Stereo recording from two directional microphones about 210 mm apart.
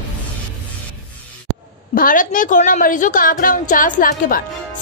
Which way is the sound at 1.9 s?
40° left (ahead or behind).